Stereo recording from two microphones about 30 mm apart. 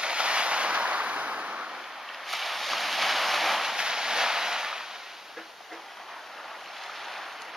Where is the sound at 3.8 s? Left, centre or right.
Right.